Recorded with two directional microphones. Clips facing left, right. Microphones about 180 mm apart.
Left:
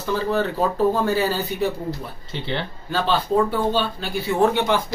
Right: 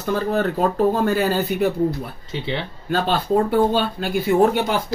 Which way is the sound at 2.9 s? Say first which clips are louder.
Right 2 dB; 50° right (ahead or behind).